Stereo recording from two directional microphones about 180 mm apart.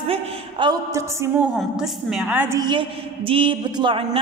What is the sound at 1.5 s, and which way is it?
A woman's voice, 5° right (ahead or behind).